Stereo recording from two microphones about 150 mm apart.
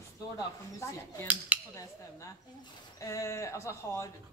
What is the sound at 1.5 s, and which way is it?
Dishes, 10° right (ahead or behind).